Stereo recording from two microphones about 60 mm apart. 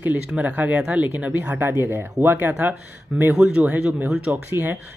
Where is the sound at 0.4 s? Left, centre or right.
Right.